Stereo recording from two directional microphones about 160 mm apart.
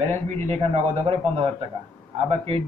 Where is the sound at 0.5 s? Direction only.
40° right (ahead or behind).